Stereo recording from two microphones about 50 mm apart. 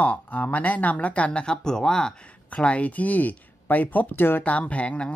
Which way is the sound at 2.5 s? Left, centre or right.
Left.